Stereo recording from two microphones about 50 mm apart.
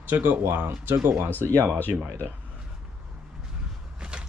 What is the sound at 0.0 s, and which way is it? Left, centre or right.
Speech, right.